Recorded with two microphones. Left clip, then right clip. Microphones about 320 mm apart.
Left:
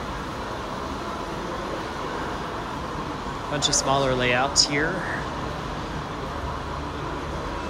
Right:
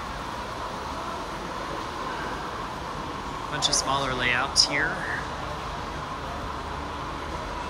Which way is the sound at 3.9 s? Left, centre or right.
Centre.